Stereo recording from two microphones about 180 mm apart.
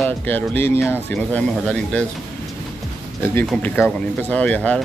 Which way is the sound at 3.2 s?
15° left (ahead or behind).